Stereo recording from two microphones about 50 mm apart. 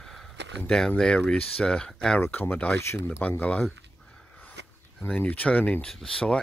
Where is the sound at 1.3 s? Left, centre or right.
Left.